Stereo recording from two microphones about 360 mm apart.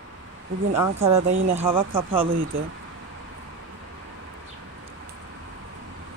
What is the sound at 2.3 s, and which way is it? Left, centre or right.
Speech, right.